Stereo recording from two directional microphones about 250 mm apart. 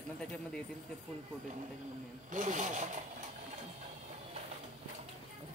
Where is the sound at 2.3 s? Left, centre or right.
Right.